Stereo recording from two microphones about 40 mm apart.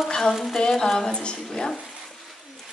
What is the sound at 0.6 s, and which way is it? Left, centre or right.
Speech, centre.